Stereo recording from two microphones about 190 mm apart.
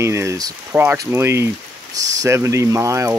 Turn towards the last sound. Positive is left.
turn(degrees=-15)  # may be behind; listen again after turning